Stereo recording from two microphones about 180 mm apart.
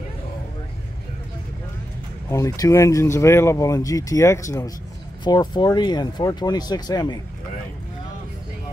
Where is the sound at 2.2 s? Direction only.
15° left (ahead or behind).